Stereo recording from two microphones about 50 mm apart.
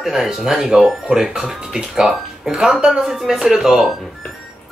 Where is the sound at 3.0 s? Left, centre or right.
Centre.